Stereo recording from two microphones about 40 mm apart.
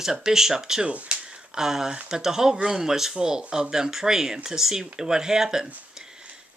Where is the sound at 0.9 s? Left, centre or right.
Right.